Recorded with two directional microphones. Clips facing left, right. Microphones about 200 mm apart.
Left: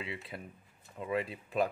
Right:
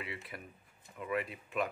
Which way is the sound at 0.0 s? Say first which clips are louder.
Left 3 dB; 25° left (ahead or behind).